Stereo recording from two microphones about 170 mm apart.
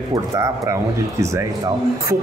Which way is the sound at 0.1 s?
15° right (ahead or behind).